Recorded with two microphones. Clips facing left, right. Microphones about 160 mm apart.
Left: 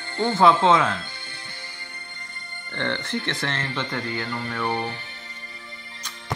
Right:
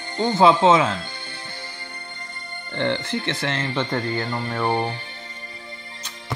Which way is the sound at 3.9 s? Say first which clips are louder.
Right 4 dB; 30° right (ahead or behind).